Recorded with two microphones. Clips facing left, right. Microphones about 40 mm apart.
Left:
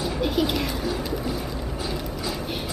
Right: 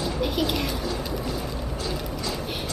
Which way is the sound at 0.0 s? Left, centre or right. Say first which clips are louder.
Left 2 dB; centre.